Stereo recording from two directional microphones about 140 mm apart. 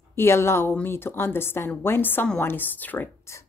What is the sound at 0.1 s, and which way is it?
A woman's voice, 20° left (ahead or behind).